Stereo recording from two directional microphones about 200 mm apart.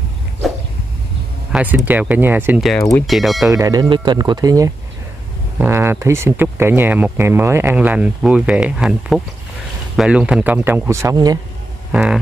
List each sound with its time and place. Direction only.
1.5 s speech: 5° right (ahead or behind)
3.4 s speech: 15° right (ahead or behind)
11.9 s hum: 5° right (ahead or behind)